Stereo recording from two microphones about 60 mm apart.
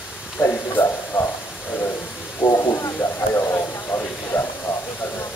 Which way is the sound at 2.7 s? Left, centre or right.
Left.